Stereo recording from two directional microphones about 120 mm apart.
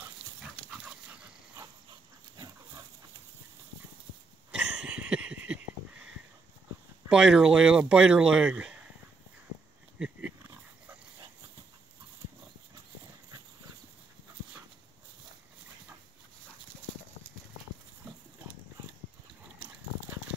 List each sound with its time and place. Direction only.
1.6 s dog: 35° right (ahead or behind)
4.5 s a sound: 10° right (ahead or behind)
7.1 s speech: 5° right (ahead or behind)
9.9 s pig: 10° right (ahead or behind)